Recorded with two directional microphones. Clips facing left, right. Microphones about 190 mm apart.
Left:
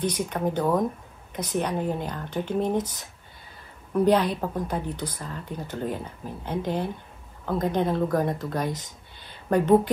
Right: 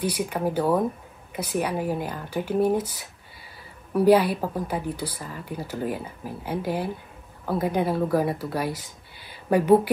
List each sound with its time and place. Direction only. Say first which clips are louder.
0.0 s speech: right 1 dB; 10° right (ahead or behind)